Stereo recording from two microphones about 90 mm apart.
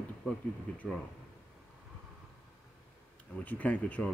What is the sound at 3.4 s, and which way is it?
Speech, 15° left (ahead or behind).